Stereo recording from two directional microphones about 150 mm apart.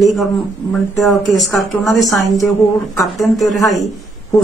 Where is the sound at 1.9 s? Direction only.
Centre (ahead or behind).